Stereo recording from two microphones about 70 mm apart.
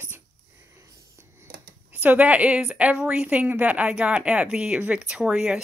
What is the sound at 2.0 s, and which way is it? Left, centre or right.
Speech, right.